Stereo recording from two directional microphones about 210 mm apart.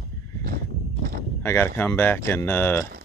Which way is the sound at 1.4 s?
10° left (ahead or behind).